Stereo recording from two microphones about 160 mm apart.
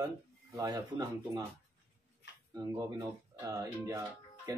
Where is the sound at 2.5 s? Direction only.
25° right (ahead or behind).